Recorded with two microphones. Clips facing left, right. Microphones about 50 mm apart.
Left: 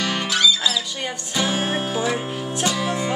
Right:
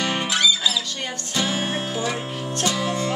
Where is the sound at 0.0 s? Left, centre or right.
Centre.